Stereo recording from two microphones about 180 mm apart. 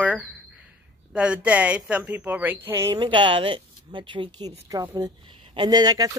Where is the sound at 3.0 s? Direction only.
30° right (ahead or behind).